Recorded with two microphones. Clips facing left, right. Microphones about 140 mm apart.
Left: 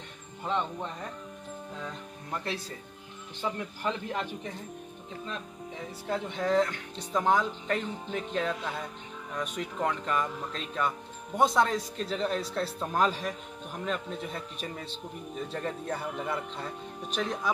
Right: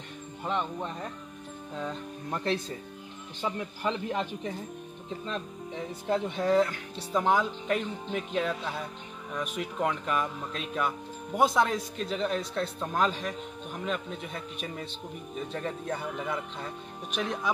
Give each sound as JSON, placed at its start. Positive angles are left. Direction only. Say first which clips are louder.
{"t": 0.4, "sound": "speech", "louder": "even", "side_deg": -10}
{"t": 2.3, "sound": "speech", "louder": "right 4 dB", "side_deg": -25}
{"t": 6.0, "sound": "speech", "louder": "right 3 dB", "side_deg": -15}
{"t": 9.6, "sound": "a man's voice", "louder": "right 1 dB", "side_deg": -10}